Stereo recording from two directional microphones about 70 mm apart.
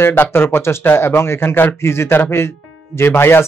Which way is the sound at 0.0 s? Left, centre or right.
Left.